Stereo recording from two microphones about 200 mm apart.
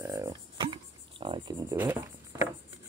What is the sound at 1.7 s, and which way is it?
Speech, 10° right (ahead or behind).